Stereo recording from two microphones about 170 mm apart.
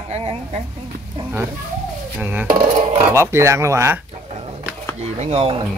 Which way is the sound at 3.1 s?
15° right (ahead or behind).